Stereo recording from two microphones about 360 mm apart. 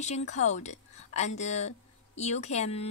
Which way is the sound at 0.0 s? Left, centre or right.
Centre.